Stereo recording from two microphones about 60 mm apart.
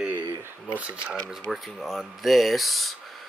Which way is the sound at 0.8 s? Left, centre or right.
Right.